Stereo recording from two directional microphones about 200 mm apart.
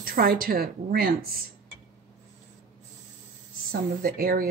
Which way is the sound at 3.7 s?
45° right (ahead or behind).